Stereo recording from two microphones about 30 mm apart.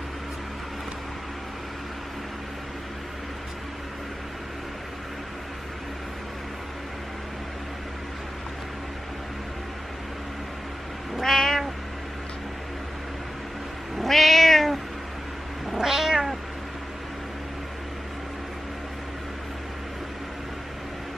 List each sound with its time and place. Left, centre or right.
11.2 s cat: centre
14.0 s cat: centre
15.8 s cat: centre